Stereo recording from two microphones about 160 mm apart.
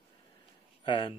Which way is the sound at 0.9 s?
30° left (ahead or behind).